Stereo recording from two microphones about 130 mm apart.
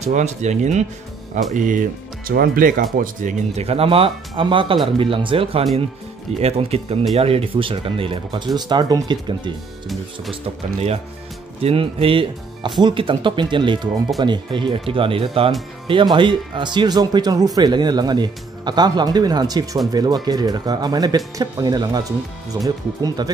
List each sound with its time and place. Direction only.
0.0 s speech: 60° right (ahead or behind); by 3.3 s 90° right
3.5 s speech: 50° right (ahead or behind)
11.6 s speech: 45° right (ahead or behind)
23.0 s speech: 30° right (ahead or behind)